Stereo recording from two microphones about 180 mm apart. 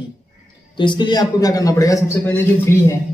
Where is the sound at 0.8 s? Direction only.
25° left (ahead or behind).